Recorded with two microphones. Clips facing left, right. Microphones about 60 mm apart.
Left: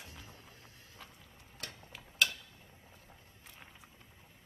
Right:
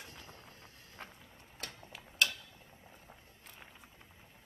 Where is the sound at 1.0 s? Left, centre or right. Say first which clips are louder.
Right 5 dB; right.